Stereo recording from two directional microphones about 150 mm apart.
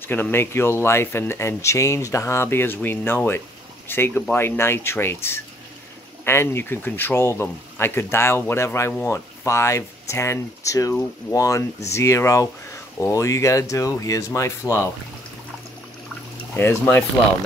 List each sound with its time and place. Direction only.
0.0 s speech: 15° left (ahead or behind)
16.5 s speech: 15° left (ahead or behind)